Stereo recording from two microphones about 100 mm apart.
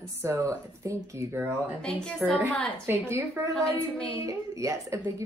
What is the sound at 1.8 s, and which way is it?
Speech, 5° left (ahead or behind).